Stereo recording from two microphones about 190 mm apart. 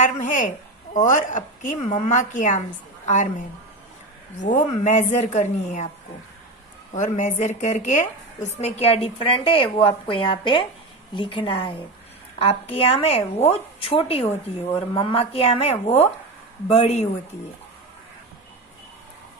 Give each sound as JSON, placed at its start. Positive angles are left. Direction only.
{"t": 0.0, "sound": "a woman's voice", "side_deg": 40}
{"t": 4.4, "sound": "a woman's voice", "side_deg": 40}
{"t": 6.9, "sound": "a woman's voice", "side_deg": 40}